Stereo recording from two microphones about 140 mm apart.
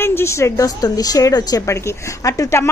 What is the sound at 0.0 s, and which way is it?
A woman's voice, 20° left (ahead or behind).